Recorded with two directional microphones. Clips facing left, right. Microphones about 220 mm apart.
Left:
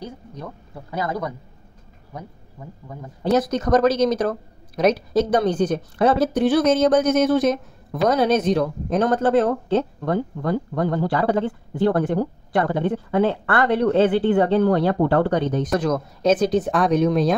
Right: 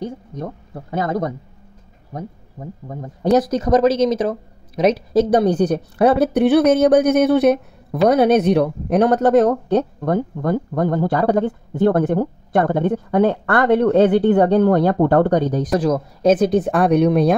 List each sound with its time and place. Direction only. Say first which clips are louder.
0.4 s speech: right 7 dB; 45° right (ahead or behind); by 4.0 s 30° right (ahead or behind)
5.1 s a woman's voice: right 4 dB; 35° right (ahead or behind)
6.0 s speech: right 4 dB; 60° right (ahead or behind)
9.1 s speech: right 3 dB; 45° right (ahead or behind)
16.3 s speech: right 3 dB; 55° right (ahead or behind)